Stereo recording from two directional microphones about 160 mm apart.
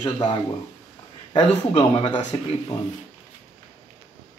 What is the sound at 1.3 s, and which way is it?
Speech, 30° left (ahead or behind).